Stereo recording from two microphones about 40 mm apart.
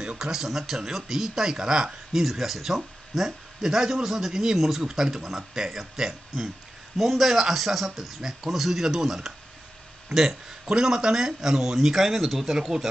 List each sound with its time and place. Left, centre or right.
0.0 s speech: right
0.3 s speech: centre
2.2 s speech: centre
12.5 s speech: centre